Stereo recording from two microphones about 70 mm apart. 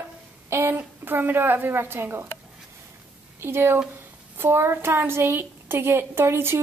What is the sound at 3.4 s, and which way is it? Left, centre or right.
A woman's voice, right.